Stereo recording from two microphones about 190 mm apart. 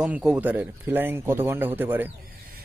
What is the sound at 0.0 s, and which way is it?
Speech, 5° right (ahead or behind).